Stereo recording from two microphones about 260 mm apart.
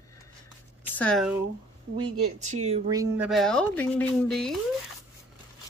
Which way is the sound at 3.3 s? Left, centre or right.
Centre.